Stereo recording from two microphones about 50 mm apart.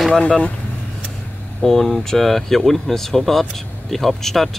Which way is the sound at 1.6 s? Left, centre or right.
Centre.